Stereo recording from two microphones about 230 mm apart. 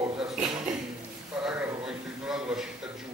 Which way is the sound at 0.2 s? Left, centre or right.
Centre.